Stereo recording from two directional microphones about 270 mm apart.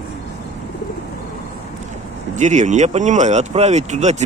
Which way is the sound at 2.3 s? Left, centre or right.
Right.